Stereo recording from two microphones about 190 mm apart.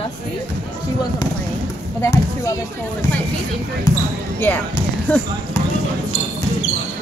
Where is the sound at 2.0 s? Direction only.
15° left (ahead or behind).